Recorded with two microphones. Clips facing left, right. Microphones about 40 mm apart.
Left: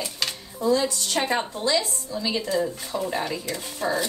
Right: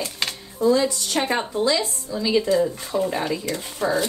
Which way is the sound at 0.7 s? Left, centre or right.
Right.